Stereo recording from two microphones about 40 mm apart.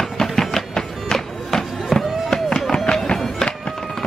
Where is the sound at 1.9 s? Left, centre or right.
Centre.